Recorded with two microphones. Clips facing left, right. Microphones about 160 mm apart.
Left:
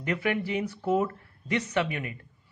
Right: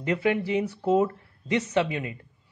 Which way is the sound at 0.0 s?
25° right (ahead or behind).